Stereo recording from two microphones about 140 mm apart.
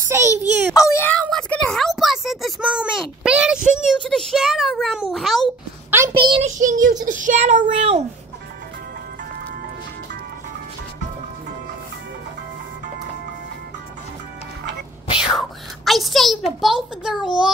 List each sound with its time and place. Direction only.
0.1 s a child's voice: 15° right (ahead or behind)
0.7 s speech: 20° left (ahead or behind)
1.3 s a sound: 5° left (ahead or behind)
4.0 s a child's voice: 5° left (ahead or behind)
5.9 s a sound: 20° right (ahead or behind)
6.4 s child singing: 65° right (ahead or behind)
7.1 s speech: 65° right (ahead or behind)
15.1 s whispering: 5° right (ahead or behind)
16.6 s a child's voice: 5° right (ahead or behind)